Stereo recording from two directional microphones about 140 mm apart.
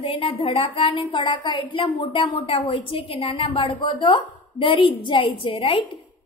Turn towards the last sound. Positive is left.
turn(degrees=40)  # may be behind; listen again after turning